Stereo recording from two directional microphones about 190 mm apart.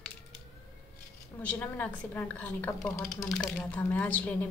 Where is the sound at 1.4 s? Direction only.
10° left (ahead or behind).